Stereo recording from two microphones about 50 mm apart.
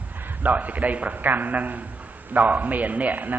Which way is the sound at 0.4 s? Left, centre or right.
Right.